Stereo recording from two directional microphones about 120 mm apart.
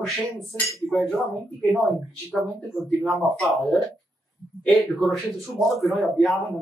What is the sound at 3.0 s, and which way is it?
Speech, centre (ahead or behind).